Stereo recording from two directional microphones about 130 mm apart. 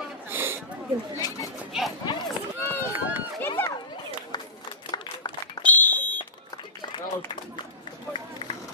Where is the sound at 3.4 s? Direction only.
20° left (ahead or behind).